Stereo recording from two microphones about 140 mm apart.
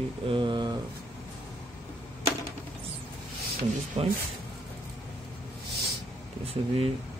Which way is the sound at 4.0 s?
50° right (ahead or behind).